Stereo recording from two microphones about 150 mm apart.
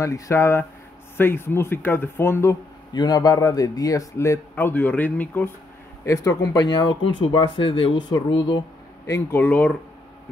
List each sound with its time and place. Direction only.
0.0 s speech: 20° left (ahead or behind)
2.9 s a man's voice: 25° left (ahead or behind)
9.0 s speech: 15° left (ahead or behind)